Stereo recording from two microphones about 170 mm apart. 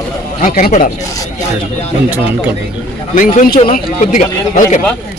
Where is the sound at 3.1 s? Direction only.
50° left (ahead or behind).